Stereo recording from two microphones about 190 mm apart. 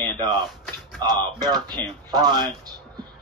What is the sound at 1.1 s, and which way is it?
Speech, 20° right (ahead or behind).